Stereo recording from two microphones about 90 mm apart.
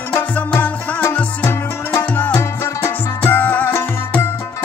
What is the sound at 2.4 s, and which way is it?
Music, 30° left (ahead or behind).